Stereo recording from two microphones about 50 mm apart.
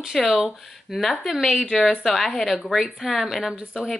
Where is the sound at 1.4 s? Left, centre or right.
Left.